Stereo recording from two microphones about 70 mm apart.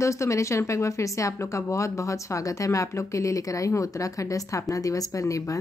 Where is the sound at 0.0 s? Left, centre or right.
Left.